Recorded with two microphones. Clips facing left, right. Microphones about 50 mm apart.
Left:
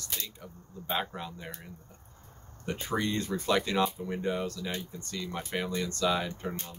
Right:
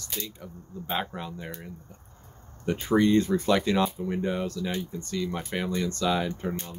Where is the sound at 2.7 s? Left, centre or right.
Centre.